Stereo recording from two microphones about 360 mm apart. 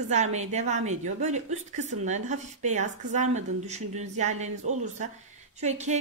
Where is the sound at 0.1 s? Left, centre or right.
Centre.